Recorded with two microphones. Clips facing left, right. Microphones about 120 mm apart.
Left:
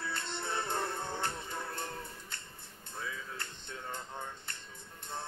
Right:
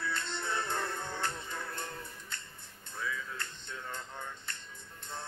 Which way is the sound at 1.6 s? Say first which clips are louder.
Left 1 dB; 30° left (ahead or behind).